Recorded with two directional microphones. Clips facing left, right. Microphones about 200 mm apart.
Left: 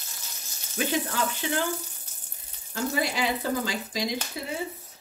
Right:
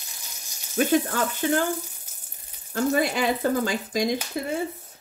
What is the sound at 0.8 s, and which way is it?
Speech, 50° right (ahead or behind).